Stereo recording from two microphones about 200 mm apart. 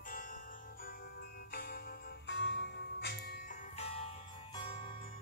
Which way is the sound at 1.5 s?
50° left (ahead or behind).